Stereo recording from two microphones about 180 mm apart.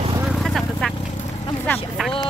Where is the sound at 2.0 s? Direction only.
5° left (ahead or behind).